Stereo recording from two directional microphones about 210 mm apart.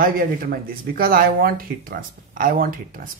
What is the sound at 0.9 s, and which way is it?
Speech, 45° right (ahead or behind).